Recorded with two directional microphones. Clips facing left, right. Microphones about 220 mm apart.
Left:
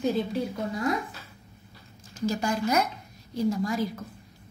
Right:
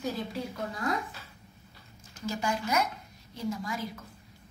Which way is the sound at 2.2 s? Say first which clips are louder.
Left 5 dB; 40° left (ahead or behind).